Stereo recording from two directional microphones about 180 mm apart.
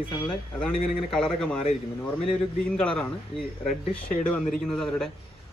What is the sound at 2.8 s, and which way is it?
Speech, 5° left (ahead or behind).